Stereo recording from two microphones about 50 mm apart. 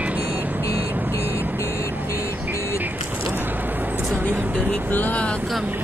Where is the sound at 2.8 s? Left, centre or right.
Right.